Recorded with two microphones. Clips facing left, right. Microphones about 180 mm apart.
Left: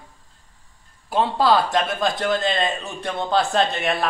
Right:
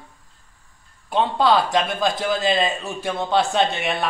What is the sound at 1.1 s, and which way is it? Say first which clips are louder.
A man's voice: even; centre (ahead or behind).